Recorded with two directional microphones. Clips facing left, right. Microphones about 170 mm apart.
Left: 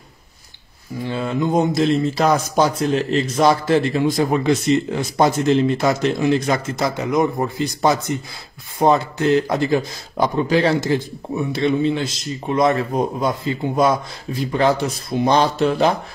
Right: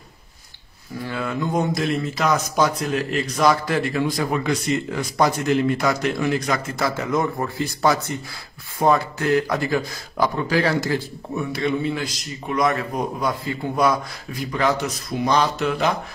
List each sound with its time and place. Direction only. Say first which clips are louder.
1.0 s speech: left 4 dB; 25° left (ahead or behind)